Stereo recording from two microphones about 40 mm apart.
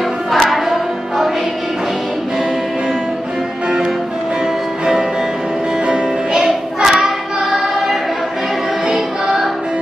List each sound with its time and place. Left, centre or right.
0.3 s music: centre
5.9 s music: centre
6.4 s child singing: centre
8.9 s music: centre